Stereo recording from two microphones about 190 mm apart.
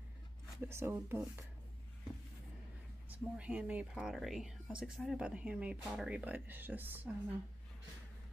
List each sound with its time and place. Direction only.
0.6 s speech: 15° right (ahead or behind)
3.1 s speech: 5° right (ahead or behind)